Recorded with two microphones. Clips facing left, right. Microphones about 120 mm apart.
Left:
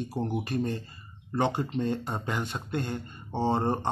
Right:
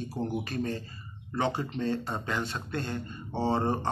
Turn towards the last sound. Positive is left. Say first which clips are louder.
# left 1 dB
turn(degrees=15)  # may be behind; listen again after turning